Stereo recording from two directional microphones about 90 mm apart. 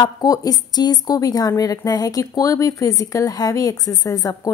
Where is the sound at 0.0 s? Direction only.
45° left (ahead or behind).